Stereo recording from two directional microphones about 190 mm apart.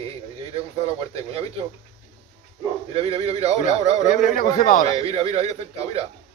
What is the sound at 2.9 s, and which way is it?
Speech, 35° right (ahead or behind).